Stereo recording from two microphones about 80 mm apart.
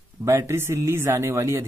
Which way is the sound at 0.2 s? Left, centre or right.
Right.